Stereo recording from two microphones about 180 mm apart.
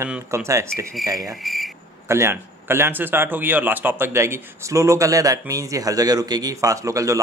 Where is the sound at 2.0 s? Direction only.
15° right (ahead or behind).